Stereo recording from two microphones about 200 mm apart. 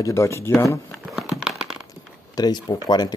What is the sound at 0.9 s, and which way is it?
Crumpling, centre (ahead or behind).